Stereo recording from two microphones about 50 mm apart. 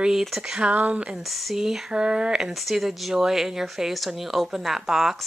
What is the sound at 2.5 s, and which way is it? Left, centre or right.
Speech, centre.